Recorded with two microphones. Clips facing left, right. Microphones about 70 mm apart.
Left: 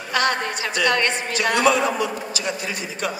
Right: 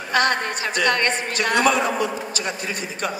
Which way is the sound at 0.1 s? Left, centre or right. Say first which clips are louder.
Right 1 dB; right.